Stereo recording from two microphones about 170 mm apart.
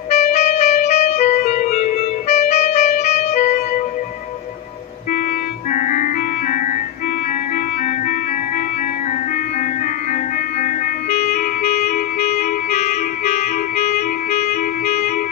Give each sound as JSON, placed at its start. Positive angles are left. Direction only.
{"t": 0.1, "sound": "clarinet", "side_deg": 40}
{"t": 5.7, "sound": "music", "side_deg": 45}
{"t": 10.6, "sound": "music", "side_deg": 40}
{"t": 12.2, "sound": "clarinet", "side_deg": 40}